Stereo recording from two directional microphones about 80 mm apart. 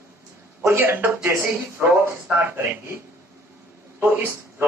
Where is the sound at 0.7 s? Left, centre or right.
Right.